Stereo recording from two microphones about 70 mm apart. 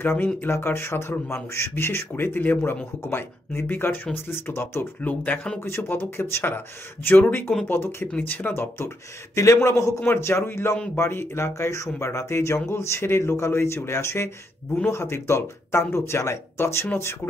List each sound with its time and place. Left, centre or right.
0.0 s speech: left
5.0 s speech: left
5.7 s speech: left